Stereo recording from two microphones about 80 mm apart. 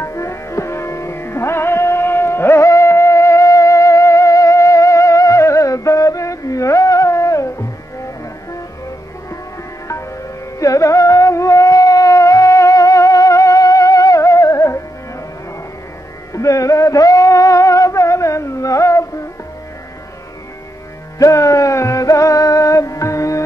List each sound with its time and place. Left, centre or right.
0.0 s music: left
10.6 s music: left
16.3 s a sound: left
21.2 s music: left